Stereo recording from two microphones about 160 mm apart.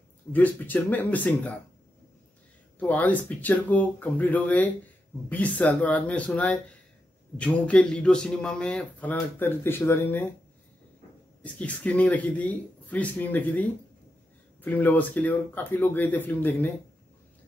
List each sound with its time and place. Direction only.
0.3 s a man's voice: 10° left (ahead or behind)
2.8 s a man's voice: 10° left (ahead or behind)
11.4 s a man's voice: 10° left (ahead or behind)